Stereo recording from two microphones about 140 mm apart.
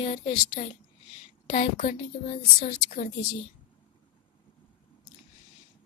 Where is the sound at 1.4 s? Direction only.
65° left (ahead or behind).